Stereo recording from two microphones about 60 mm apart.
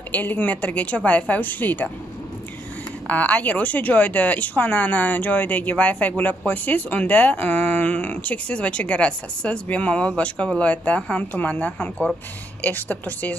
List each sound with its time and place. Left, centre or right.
0.1 s a woman's voice: left
3.1 s a woman's voice: left